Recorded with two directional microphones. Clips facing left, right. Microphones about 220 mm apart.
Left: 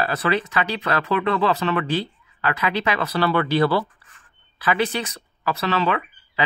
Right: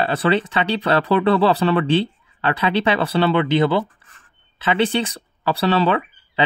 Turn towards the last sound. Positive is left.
turn(degrees=-30)  # may be behind; listen again after turning